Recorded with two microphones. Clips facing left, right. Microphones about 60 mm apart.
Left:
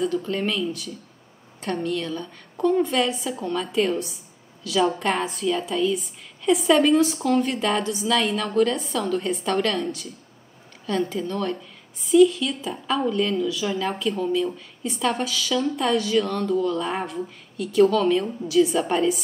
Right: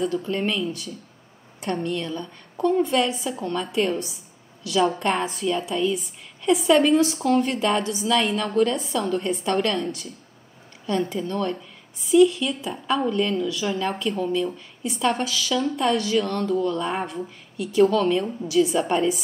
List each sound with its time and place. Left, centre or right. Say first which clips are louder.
0.0 s a woman's voice: even; centre